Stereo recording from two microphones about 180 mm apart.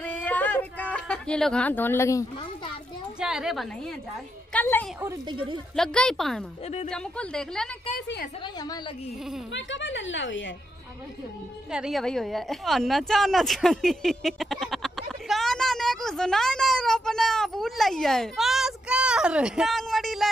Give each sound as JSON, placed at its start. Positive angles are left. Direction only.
{"t": 0.0, "sound": "yodeling", "side_deg": 10}
{"t": 0.9, "sound": "speech", "side_deg": 5}
{"t": 3.2, "sound": "speech", "side_deg": -5}
{"t": 4.5, "sound": "a woman's voice", "side_deg": 10}
{"t": 8.5, "sound": "a woman's voice", "side_deg": 20}
{"t": 9.5, "sound": "a woman's voice", "side_deg": 90}
{"t": 11.7, "sound": "speech", "side_deg": 0}